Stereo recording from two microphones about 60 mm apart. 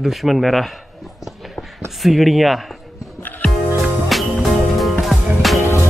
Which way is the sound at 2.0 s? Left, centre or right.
Centre.